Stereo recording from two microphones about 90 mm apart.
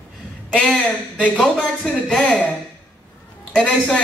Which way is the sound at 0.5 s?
10° left (ahead or behind).